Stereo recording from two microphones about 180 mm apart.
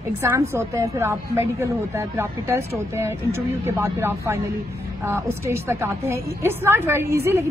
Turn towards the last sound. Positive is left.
turn(degrees=-15)  # may be behind; listen again after turning